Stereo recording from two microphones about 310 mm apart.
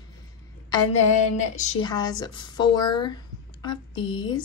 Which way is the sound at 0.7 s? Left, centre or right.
Left.